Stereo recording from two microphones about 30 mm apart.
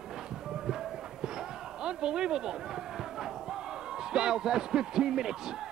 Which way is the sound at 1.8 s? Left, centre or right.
Right.